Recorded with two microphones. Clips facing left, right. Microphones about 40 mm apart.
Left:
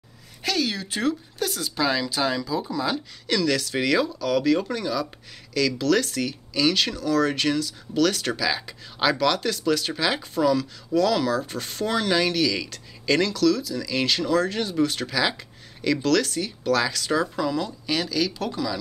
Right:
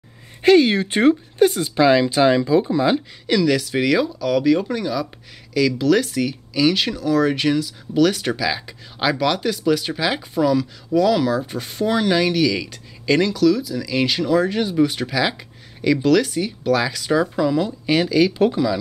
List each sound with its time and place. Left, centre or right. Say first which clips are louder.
0.4 s speech: right 12 dB; right
3.3 s speech: right 5 dB; centre
17.6 s speech: right 8 dB; right